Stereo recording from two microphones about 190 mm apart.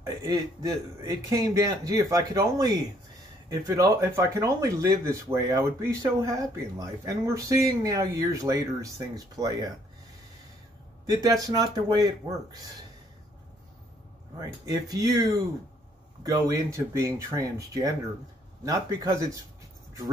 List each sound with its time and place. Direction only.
0.0 s a man's voice: 20° right (ahead or behind)
11.4 s a man's voice: 20° right (ahead or behind)
14.7 s a man's voice: 20° right (ahead or behind)